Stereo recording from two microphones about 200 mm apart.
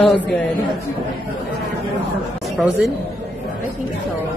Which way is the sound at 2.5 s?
Centre (ahead or behind).